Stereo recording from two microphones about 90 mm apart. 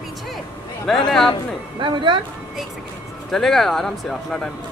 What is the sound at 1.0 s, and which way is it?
Speech, 5° left (ahead or behind).